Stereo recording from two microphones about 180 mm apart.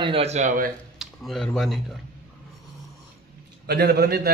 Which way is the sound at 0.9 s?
Centre (ahead or behind).